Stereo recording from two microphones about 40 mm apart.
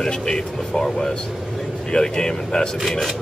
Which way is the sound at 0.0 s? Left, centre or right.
Centre.